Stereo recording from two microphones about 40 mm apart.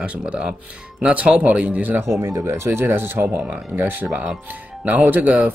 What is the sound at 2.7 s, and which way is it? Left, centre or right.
Speech, right.